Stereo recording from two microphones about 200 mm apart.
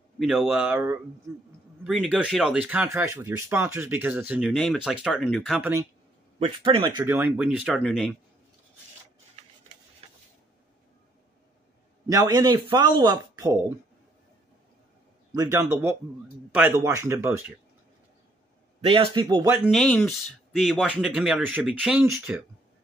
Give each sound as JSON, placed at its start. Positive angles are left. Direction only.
{"t": 0.2, "sound": "speech", "side_deg": 0}
{"t": 4.5, "sound": "speech", "side_deg": 0}
{"t": 5.6, "sound": "speech", "side_deg": -15}
{"t": 6.4, "sound": "speech", "side_deg": -25}
{"t": 7.0, "sound": "speech", "side_deg": -10}
{"t": 10.0, "sound": "a sound", "side_deg": -30}
{"t": 12.1, "sound": "speech", "side_deg": -20}
{"t": 15.3, "sound": "speech", "side_deg": -15}
{"t": 18.8, "sound": "speech", "side_deg": -30}
{"t": 19.2, "sound": "speech", "side_deg": -15}
{"t": 19.7, "sound": "speech", "side_deg": 5}